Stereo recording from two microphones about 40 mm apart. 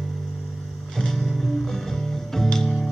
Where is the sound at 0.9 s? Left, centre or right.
Centre.